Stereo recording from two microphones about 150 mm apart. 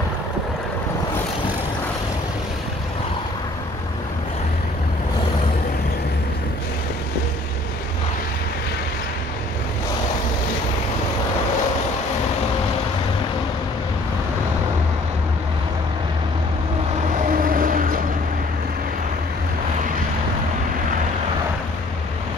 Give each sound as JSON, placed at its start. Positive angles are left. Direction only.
{"t": 17.3, "sound": "vehicle", "side_deg": -70}